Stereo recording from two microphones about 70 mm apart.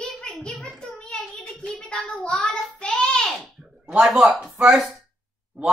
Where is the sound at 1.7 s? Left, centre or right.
Centre.